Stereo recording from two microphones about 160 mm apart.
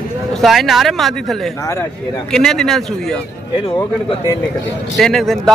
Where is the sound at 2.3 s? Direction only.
5° left (ahead or behind).